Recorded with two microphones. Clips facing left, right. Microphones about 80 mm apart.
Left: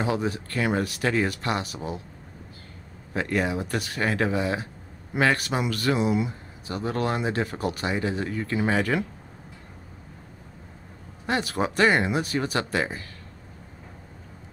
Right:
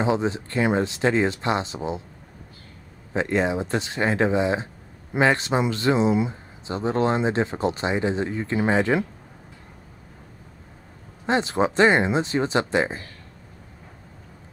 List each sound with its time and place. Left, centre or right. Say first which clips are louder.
0.0 s speech: right 4 dB; right
3.1 s speech: right 3 dB; right
11.2 s speech: right 4 dB; right